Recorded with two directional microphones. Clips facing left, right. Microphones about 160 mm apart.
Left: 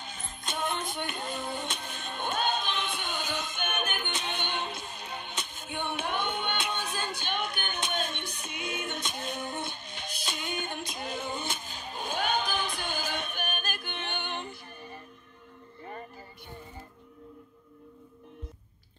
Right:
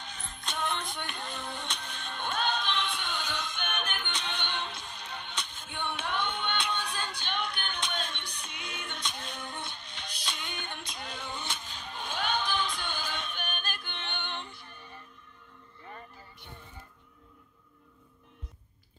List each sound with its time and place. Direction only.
0.0 s music: 5° left (ahead or behind)
9.1 s a sound: 10° left (ahead or behind)
9.8 s music: 10° left (ahead or behind)
11.5 s a sound: 10° left (ahead or behind)
11.9 s music: 45° left (ahead or behind)
12.5 s music: 10° left (ahead or behind)
12.9 s music: 50° left (ahead or behind)
14.2 s music: 10° left (ahead or behind)